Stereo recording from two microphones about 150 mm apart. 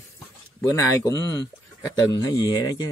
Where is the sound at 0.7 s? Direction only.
20° left (ahead or behind).